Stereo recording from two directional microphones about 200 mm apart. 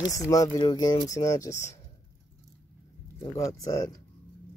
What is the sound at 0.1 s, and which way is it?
Speech, 15° left (ahead or behind).